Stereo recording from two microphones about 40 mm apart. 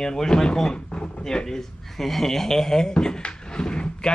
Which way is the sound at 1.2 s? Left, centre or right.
Centre.